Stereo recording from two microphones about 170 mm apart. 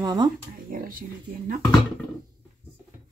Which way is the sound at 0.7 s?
55° right (ahead or behind).